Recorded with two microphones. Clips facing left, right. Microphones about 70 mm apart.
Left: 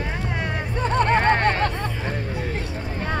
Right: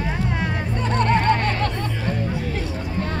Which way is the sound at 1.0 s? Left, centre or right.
Left.